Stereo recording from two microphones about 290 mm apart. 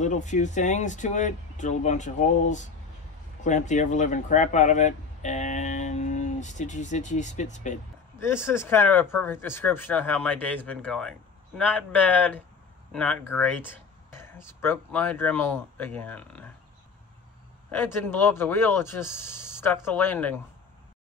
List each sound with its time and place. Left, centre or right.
0.0 s speech: left
8.5 s speech: centre
17.6 s speech: centre